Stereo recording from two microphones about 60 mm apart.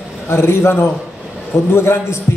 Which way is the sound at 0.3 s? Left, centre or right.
Left.